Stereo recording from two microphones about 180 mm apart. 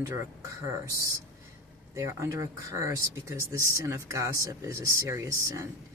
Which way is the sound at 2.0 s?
15° right (ahead or behind).